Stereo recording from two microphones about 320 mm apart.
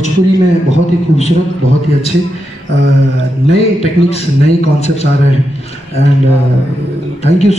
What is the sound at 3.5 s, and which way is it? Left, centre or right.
A man's voice, centre.